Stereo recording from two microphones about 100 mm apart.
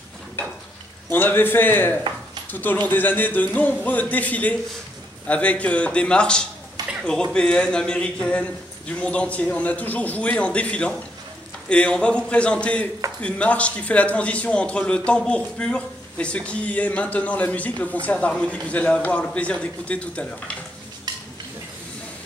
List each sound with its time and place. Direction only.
1.1 s a man's voice: 20° left (ahead or behind)